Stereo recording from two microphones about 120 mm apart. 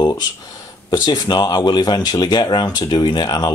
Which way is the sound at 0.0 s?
35° left (ahead or behind).